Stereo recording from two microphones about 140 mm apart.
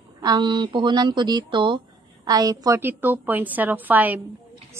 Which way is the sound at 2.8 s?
15° right (ahead or behind).